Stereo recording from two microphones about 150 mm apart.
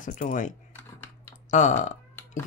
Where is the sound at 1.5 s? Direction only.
55° left (ahead or behind).